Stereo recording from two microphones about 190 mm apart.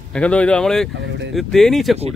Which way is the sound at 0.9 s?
70° right (ahead or behind).